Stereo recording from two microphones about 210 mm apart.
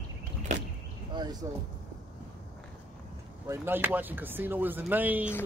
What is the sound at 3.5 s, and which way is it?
Speech, 10° right (ahead or behind).